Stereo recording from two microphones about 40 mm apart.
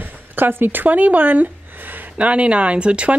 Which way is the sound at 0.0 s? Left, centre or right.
Right.